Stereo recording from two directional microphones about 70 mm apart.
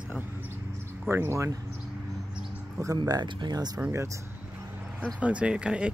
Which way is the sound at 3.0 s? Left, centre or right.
Right.